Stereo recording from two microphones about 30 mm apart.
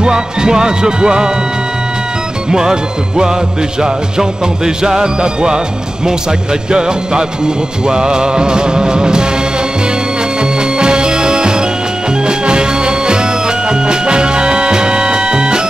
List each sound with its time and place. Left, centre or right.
0.0 s music: right
2.5 s music: right
6.7 s music: right
10.8 s music: right